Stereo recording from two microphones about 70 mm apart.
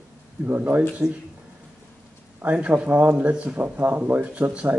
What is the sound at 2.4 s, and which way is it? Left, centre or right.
Speech, right.